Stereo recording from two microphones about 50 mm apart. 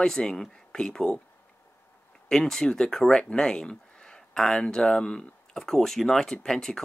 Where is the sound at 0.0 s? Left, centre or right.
Centre.